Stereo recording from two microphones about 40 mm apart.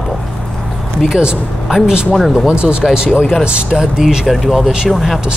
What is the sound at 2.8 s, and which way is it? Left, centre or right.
Speech, centre.